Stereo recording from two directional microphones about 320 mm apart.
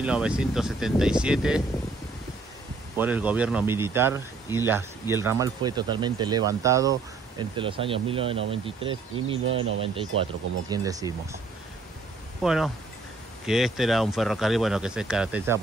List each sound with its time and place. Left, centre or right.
0.0 s speech: centre
3.0 s speech: centre
12.4 s speech: centre